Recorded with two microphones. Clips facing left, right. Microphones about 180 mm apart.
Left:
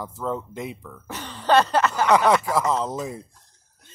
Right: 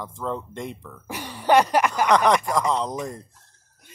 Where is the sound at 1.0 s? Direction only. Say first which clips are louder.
Right 1 dB; 10° right (ahead or behind).